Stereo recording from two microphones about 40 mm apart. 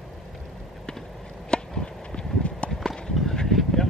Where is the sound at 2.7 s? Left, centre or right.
Centre.